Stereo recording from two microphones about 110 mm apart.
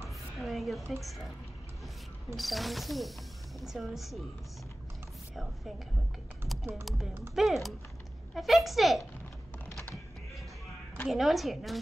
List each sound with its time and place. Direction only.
0.4 s a sound: centre (ahead or behind)
1.0 s speech: centre (ahead or behind)
2.3 s speech: centre (ahead or behind)
6.7 s speech: centre (ahead or behind)
11.1 s speech: centre (ahead or behind)